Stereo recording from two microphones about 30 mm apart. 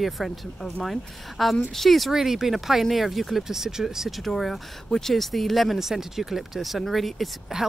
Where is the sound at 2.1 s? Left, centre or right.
Centre.